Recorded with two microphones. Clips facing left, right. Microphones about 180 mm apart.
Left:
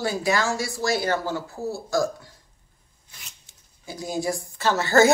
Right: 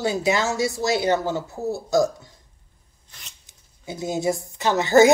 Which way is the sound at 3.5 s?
20° right (ahead or behind).